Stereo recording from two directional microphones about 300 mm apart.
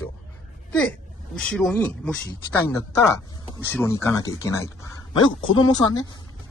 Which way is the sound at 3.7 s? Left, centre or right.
Centre.